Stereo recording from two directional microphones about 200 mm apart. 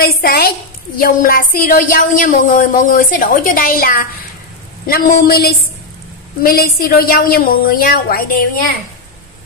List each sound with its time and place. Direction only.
0.0 s a woman's voice: 50° left (ahead or behind)